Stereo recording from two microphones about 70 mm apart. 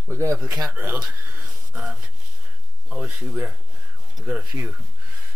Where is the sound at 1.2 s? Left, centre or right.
Right.